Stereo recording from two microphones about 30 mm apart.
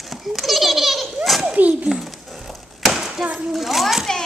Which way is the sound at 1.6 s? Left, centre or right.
Right.